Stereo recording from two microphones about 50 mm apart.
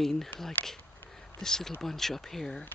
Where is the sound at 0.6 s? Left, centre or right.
Left.